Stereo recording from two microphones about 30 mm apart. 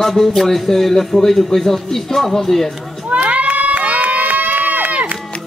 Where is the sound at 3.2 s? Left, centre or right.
Right.